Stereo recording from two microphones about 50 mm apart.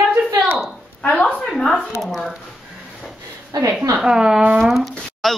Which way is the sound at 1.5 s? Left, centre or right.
Centre.